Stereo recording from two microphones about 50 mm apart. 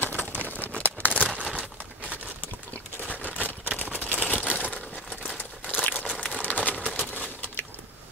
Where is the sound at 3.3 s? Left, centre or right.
Left.